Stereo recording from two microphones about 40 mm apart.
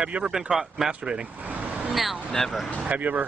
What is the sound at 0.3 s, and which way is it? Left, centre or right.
Speech, centre.